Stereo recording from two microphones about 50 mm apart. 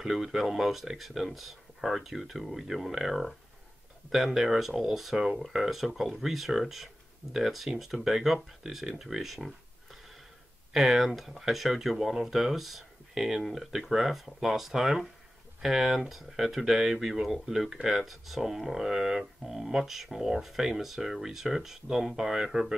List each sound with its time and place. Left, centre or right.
0.0 s speech: centre